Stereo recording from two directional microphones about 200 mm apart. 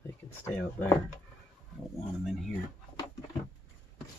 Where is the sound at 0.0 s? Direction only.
10° left (ahead or behind).